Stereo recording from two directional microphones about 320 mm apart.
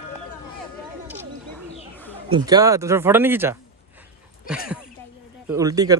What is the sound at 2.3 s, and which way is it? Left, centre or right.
Speech, centre.